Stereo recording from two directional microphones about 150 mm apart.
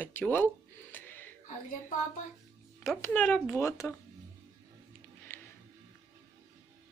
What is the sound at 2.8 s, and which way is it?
Speech, 5° left (ahead or behind).